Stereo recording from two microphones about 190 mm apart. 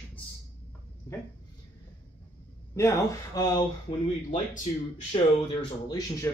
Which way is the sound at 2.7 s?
15° left (ahead or behind).